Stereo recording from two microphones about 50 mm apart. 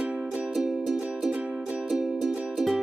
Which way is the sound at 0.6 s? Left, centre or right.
Centre.